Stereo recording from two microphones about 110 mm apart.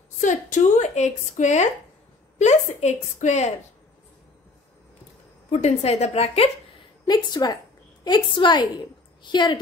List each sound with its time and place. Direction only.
0.3 s a woman's voice: 90° left
5.5 s a woman's voice: 80° left
7.1 s a woman's voice: 40° left (ahead or behind)